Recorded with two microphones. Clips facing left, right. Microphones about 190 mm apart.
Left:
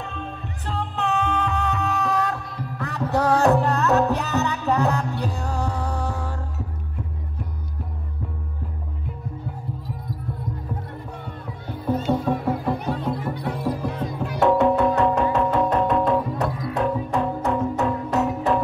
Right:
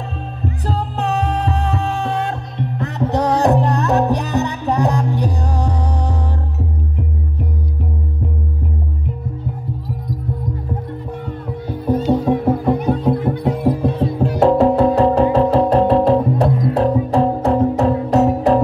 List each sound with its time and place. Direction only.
0.1 s music: 35° right (ahead or behind); by 6.1 s 15° right (ahead or behind)
12.1 s music: 20° right (ahead or behind)
12.4 s music: 60° right (ahead or behind)
13.8 s music: 30° right (ahead or behind)